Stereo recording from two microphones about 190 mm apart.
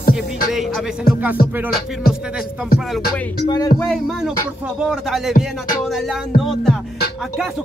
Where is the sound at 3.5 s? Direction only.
20° left (ahead or behind).